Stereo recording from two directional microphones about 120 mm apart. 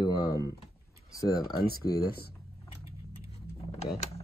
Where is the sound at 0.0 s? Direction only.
35° left (ahead or behind).